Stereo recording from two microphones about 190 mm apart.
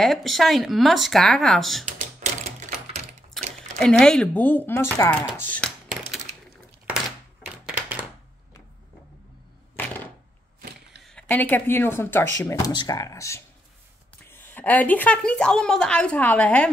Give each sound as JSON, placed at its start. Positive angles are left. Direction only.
{"t": 0.0, "sound": "speech", "side_deg": 0}
{"t": 3.8, "sound": "a woman's voice", "side_deg": 5}
{"t": 7.4, "sound": "a sound", "side_deg": -5}
{"t": 11.1, "sound": "a woman's voice", "side_deg": 5}